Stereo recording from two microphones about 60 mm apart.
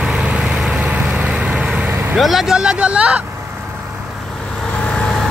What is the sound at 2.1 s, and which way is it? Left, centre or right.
Speech, centre.